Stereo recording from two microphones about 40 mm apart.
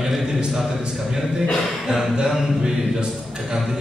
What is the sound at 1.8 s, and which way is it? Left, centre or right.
Speech, centre.